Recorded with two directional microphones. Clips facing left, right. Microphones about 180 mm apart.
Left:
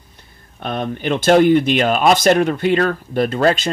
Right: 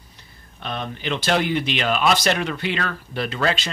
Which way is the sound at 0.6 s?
50° left (ahead or behind).